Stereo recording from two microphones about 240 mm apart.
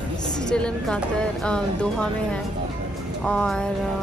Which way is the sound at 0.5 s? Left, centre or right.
Centre.